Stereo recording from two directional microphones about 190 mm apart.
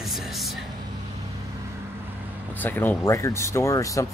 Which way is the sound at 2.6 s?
10° left (ahead or behind).